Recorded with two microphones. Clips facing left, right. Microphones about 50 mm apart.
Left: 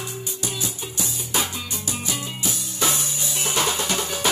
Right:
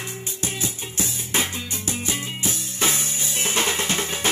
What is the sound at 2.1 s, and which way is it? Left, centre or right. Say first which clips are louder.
Drum kit: even; right.